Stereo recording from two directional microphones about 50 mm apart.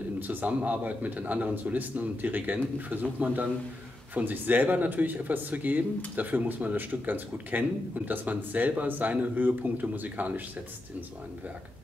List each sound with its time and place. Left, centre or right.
0.3 s speech: right